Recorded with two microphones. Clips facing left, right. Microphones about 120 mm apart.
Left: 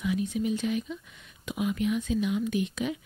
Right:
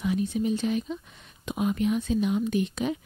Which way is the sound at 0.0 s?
30° right (ahead or behind).